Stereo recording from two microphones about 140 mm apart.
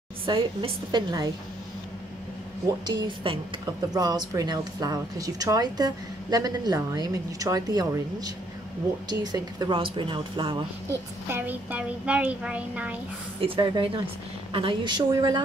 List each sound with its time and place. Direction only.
0.3 s a woman's voice: 40° right (ahead or behind)
2.9 s a woman's voice: 35° right (ahead or behind)
9.8 s a woman's voice: 40° right (ahead or behind)
11.2 s a woman's voice: 15° right (ahead or behind)
13.4 s a woman's voice: 35° right (ahead or behind)